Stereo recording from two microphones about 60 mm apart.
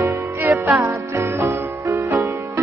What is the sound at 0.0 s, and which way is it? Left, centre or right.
Music, right.